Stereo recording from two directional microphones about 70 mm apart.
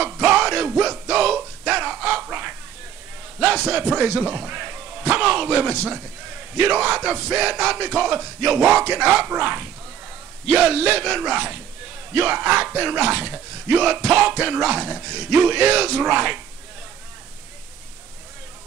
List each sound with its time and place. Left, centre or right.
0.0 s music: centre
3.3 s speech: centre
6.5 s a sound: centre
12.1 s speech: right